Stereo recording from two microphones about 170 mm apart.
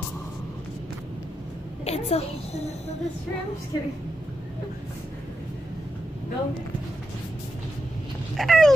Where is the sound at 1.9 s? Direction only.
35° left (ahead or behind).